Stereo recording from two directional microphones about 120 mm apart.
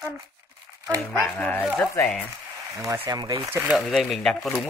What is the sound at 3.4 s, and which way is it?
Speech, 15° right (ahead or behind).